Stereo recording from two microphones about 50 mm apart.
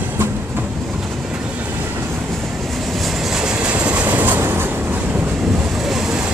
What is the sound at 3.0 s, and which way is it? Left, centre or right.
Train, centre.